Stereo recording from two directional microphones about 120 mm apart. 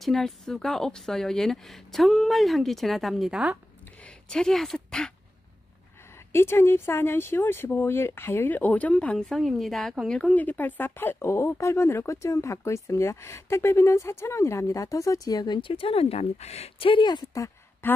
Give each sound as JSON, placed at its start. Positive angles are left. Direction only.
{"t": 0.0, "sound": "a woman's voice", "side_deg": 5}
{"t": 4.0, "sound": "speech", "side_deg": 5}
{"t": 6.3, "sound": "speech", "side_deg": 20}